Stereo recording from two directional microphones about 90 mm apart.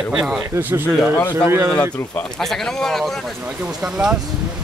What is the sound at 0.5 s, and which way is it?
Speech, 25° right (ahead or behind).